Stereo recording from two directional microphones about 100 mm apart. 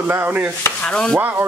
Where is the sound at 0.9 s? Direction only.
5° left (ahead or behind).